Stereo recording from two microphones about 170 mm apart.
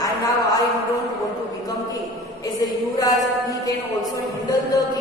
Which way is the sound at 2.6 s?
20° left (ahead or behind).